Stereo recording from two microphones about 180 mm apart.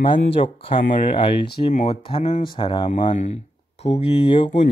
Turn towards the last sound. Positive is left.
turn(degrees=30)  # may be behind; listen again after turning